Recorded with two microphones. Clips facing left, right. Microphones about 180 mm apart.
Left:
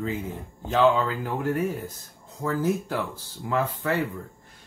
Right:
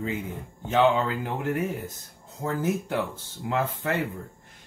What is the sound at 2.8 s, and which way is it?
Speech, 20° right (ahead or behind).